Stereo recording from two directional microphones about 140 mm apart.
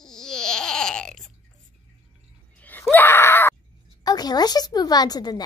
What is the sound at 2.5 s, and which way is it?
Screaming, 10° left (ahead or behind).